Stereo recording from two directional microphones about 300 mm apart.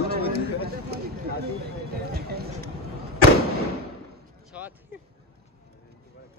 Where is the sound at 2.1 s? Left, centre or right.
Right.